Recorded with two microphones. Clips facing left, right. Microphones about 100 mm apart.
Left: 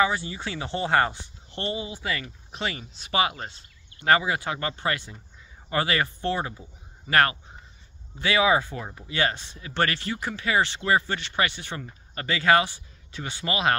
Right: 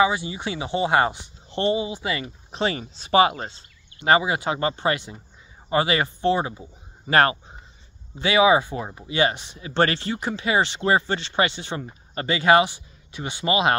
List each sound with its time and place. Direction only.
0.0 s a man's voice: 15° right (ahead or behind)
2.6 s speech: 30° right (ahead or behind)